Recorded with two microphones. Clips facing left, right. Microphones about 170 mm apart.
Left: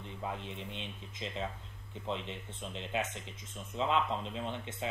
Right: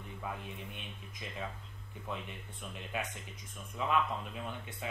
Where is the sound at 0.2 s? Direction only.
25° left (ahead or behind).